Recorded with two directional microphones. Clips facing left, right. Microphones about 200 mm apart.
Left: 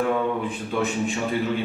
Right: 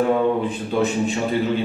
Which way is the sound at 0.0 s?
30° right (ahead or behind).